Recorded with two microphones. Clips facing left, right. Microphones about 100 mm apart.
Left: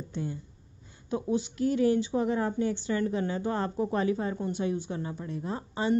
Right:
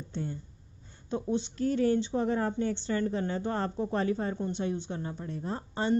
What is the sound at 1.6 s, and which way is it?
A woman's voice, 35° right (ahead or behind).